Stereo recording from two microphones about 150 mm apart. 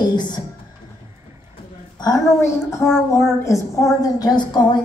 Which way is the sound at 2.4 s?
15° left (ahead or behind).